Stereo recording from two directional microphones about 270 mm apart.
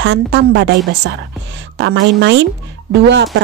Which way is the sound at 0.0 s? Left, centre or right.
Right.